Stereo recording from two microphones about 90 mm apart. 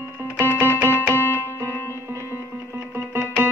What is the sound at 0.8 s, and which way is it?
Music, 20° left (ahead or behind).